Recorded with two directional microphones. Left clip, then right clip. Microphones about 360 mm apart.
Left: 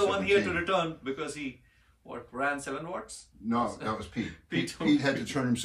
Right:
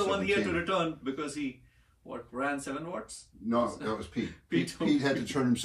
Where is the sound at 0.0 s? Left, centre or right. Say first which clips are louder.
Left 3 dB; centre.